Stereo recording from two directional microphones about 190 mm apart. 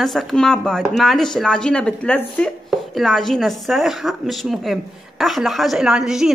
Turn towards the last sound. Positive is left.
turn(degrees=-5)  # may be behind; listen again after turning